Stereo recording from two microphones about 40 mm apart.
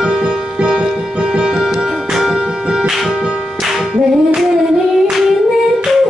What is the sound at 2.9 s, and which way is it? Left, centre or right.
Music, centre.